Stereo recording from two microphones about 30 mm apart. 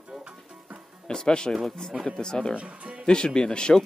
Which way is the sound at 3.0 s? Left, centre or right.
Left.